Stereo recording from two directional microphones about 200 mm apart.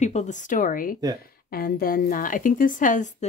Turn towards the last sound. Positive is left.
turn(degrees=40)  # may be behind; listen again after turning